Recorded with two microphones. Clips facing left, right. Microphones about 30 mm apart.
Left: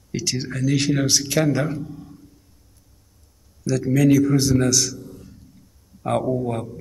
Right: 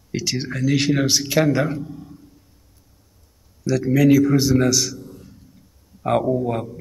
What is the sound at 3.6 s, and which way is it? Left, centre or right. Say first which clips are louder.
Speech: right 2 dB; centre.